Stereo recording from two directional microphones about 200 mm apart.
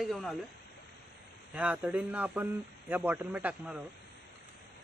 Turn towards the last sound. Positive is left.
turn(degrees=-5)  # may be behind; listen again after turning